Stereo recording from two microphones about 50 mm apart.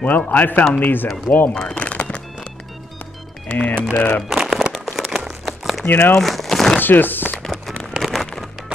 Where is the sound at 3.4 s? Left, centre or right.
Left.